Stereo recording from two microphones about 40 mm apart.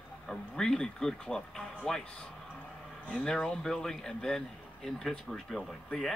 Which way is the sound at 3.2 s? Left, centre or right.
Centre.